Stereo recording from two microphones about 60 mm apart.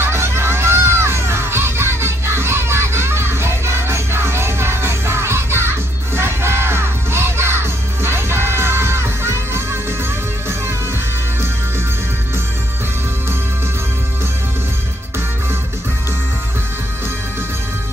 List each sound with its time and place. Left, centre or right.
0.0 s music: right